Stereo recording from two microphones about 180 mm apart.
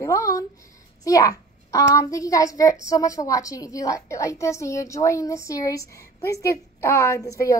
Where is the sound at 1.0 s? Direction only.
20° left (ahead or behind).